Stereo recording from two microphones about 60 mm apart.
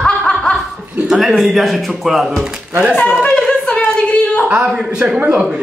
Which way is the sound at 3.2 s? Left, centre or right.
Centre.